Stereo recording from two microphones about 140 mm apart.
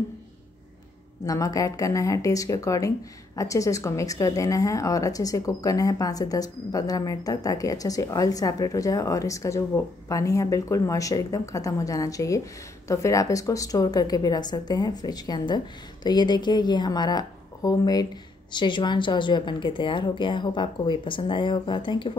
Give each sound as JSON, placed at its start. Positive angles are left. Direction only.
{"t": 1.2, "sound": "a woman's voice", "side_deg": 25}